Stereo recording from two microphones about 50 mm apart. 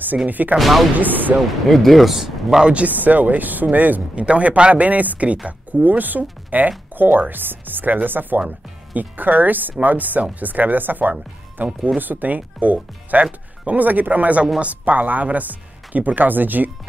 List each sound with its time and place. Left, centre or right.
0.3 s speech: right
0.6 s speech: centre
0.9 s speech: right
1.7 s speech: centre
2.7 s speech: right
4.1 s speech: right